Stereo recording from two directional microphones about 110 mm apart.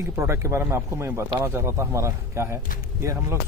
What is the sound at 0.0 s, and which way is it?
Speech, 25° right (ahead or behind).